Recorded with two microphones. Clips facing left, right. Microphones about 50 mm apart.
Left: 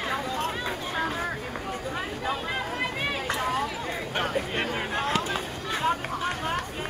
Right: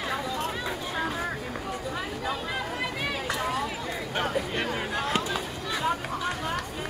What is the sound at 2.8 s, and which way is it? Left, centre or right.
Chatter, left.